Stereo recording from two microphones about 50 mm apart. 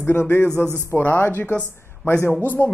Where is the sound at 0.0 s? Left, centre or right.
Left.